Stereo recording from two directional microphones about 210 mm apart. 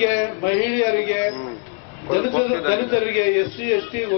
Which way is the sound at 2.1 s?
20° left (ahead or behind).